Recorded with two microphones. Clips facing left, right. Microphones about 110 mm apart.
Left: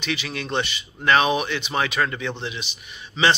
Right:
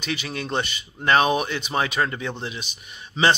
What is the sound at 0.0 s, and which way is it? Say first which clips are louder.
Speech: even; 40° right (ahead or behind).